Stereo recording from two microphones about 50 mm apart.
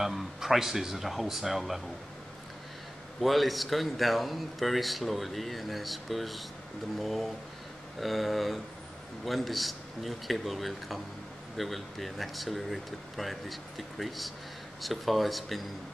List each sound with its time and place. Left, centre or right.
0.0 s speech: centre
3.2 s speech: centre